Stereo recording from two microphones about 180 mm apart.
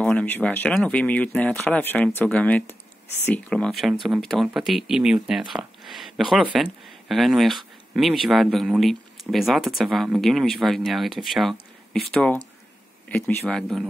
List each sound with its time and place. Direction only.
0.0 s speech: 10° left (ahead or behind)